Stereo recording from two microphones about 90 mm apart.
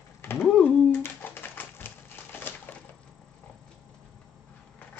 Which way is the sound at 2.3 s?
20° left (ahead or behind).